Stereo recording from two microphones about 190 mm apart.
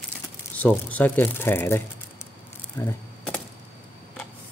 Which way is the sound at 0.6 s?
10° left (ahead or behind).